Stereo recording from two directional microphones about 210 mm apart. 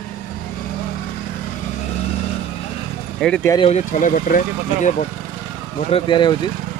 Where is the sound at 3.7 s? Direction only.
35° left (ahead or behind).